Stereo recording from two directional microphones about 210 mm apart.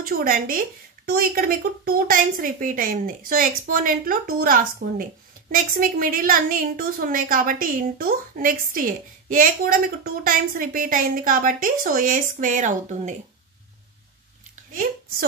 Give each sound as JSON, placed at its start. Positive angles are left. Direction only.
{"t": 0.0, "sound": "a woman's voice", "side_deg": -45}